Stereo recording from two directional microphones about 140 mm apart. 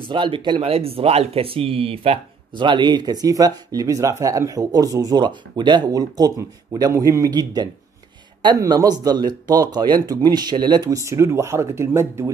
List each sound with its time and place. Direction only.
0.1 s speech: 35° right (ahead or behind); by 12.3 s 20° right (ahead or behind)